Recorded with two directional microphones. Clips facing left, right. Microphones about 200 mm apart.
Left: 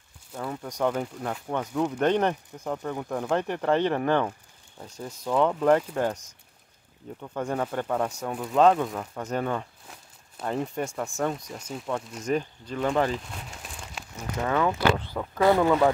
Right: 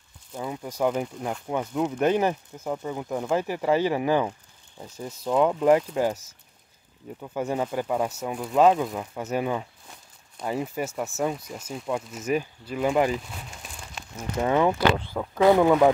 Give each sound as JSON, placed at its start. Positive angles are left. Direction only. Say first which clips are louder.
{"t": 0.3, "sound": "speech", "louder": "right 1 dB", "side_deg": -10}
{"t": 14.4, "sound": "speech", "louder": "right 3 dB", "side_deg": -20}
{"t": 15.0, "sound": "speech", "louder": "right 2 dB", "side_deg": -10}